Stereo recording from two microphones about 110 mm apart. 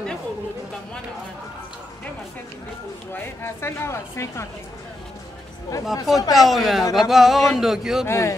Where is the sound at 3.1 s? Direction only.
20° left (ahead or behind).